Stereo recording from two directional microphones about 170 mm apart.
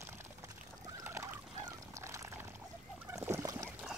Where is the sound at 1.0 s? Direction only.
15° right (ahead or behind).